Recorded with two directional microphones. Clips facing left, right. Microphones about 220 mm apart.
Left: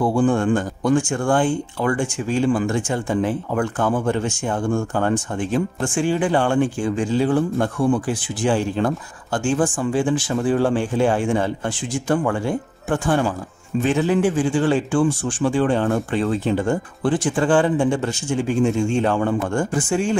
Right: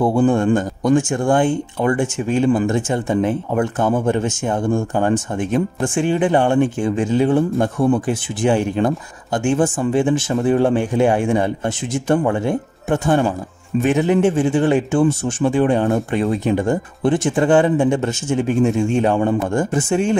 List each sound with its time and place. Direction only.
0.0 s speech: 20° right (ahead or behind)